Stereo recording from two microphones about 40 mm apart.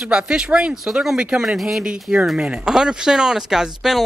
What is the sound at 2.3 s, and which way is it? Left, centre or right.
Speech, right.